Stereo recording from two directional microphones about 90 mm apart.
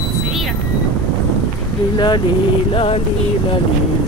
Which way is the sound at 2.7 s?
90° left.